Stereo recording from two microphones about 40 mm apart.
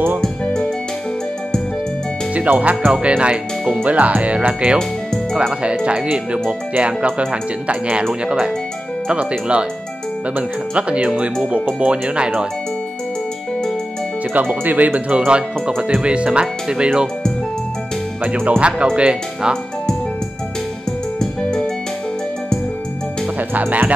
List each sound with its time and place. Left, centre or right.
0.2 s music: centre
2.3 s speech: right
3.8 s speech: right
10.3 s speech: right
14.3 s speech: right
15.0 s speech: right
18.2 s speech: right
21.2 s music: centre
23.5 s speech: right